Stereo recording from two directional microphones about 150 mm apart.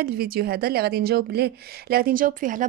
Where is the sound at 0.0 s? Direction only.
90° right.